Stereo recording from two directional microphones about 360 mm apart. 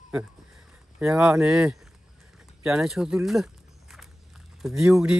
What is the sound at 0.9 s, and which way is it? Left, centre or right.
Speech, centre.